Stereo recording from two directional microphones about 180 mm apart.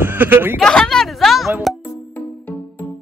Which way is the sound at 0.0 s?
10° right (ahead or behind).